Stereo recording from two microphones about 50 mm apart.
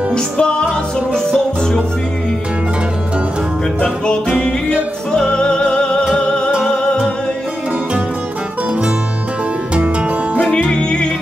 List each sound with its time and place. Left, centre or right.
0.1 s music: centre
1.1 s music: centre
3.8 s music: centre
10.7 s music: centre